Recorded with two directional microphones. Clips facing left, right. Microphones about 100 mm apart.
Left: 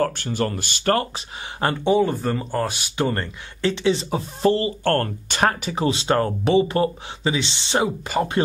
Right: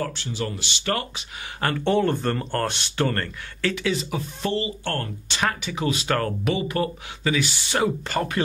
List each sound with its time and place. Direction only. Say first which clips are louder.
0.0 s speech: left 6 dB; 50° left (ahead or behind)
1.9 s speech: left 2 dB; 5° left (ahead or behind)
3.7 s speech: left 4 dB; 30° left (ahead or behind)
4.8 s speech: left 8 dB; 50° left (ahead or behind); by 8.3 s 15° left (ahead or behind)